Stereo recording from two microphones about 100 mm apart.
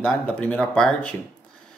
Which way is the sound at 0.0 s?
10° left (ahead or behind).